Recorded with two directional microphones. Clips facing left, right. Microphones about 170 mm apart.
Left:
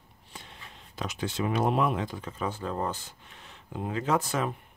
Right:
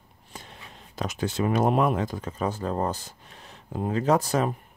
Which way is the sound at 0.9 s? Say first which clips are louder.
Right 4 dB; 45° right (ahead or behind).